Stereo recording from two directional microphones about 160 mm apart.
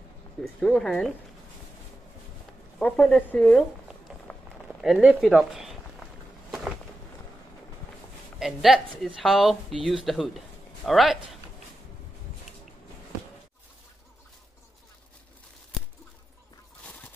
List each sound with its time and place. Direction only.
0.6 s a woman's voice: 5° left (ahead or behind)
2.8 s speech: 10° left (ahead or behind)
4.1 s run: 5° right (ahead or behind)
4.8 s speech: centre (ahead or behind)
8.4 s a woman's voice: centre (ahead or behind)
16.8 s fowl: 10° left (ahead or behind)